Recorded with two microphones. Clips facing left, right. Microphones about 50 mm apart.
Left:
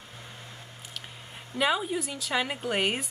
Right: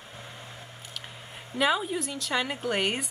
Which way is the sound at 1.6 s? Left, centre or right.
Centre.